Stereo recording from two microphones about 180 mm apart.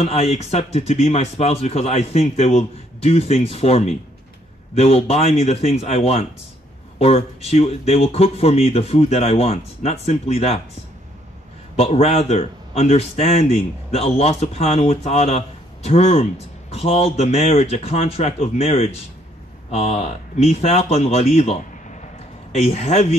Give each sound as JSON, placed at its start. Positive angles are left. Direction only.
{"t": 0.0, "sound": "speech", "side_deg": 35}
{"t": 11.7, "sound": "speech", "side_deg": 35}